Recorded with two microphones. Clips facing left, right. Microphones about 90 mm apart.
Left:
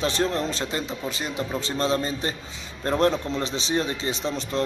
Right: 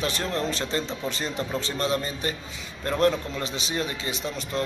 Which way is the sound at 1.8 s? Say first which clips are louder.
Left 4 dB; 25° left (ahead or behind).